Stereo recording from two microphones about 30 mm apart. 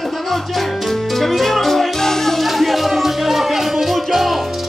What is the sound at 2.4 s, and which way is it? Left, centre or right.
Music, centre.